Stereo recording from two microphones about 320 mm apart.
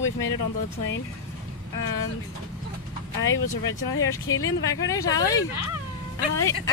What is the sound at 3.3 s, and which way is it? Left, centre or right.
Speech, left.